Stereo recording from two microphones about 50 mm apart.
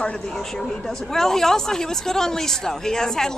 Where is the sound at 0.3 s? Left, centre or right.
Centre.